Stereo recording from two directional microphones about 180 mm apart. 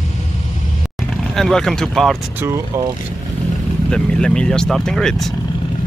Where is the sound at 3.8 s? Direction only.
5° left (ahead or behind).